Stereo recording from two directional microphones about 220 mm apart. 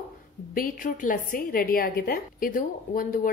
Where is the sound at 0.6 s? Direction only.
35° left (ahead or behind).